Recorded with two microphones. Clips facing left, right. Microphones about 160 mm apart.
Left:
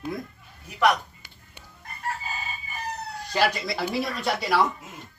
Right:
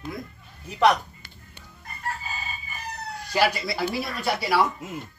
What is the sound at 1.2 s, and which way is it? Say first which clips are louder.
Music: right 3 dB; 15° left (ahead or behind).